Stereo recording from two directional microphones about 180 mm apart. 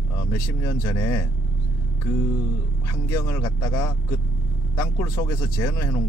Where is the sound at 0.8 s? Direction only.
15° left (ahead or behind).